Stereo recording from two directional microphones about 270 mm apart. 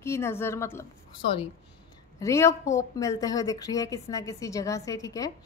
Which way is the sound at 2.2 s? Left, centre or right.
Centre.